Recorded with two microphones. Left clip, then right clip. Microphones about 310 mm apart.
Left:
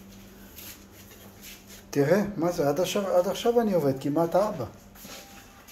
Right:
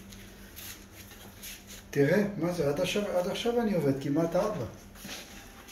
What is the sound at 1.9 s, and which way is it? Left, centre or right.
Speech, centre.